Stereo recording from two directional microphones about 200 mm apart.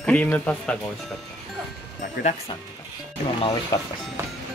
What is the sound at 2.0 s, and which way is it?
Speech, 40° left (ahead or behind).